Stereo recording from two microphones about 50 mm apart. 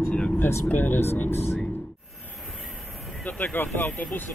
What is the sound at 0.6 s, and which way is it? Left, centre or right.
Speech, left.